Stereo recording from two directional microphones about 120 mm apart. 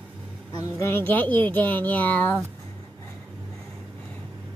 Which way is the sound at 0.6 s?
20° left (ahead or behind).